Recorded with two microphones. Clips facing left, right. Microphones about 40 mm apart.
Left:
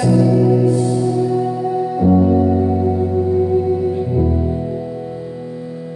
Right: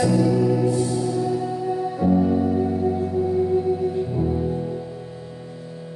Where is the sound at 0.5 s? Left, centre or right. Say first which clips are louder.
Left 6 dB; centre.